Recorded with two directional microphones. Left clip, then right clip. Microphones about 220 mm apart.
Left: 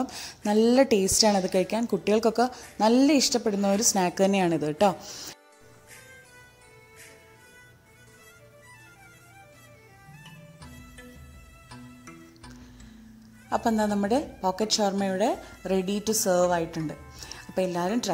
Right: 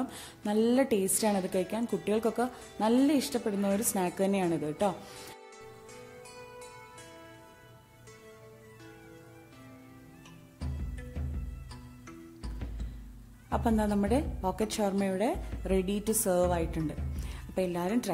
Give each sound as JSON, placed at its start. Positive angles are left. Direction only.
{"t": 0.0, "sound": "a woman's voice", "side_deg": 20}
{"t": 13.5, "sound": "a woman's voice", "side_deg": 10}